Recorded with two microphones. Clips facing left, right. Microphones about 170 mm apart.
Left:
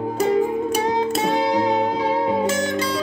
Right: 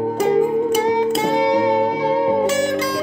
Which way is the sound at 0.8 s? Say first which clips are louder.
Right 3 dB; 15° right (ahead or behind).